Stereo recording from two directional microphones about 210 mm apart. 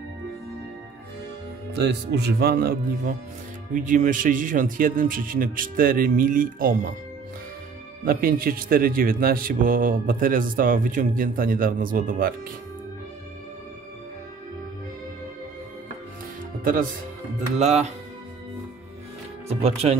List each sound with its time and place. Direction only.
1.7 s a man's voice: 55° right (ahead or behind)
8.0 s a man's voice: 45° right (ahead or behind)
17.6 s a man's voice: 30° right (ahead or behind)
19.6 s speech: 30° right (ahead or behind)